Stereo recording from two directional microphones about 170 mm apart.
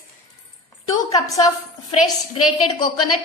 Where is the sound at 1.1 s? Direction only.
20° left (ahead or behind).